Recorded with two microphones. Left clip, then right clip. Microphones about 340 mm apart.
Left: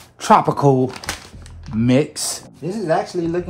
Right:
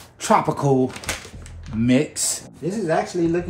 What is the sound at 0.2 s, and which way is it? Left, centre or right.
Speech, centre.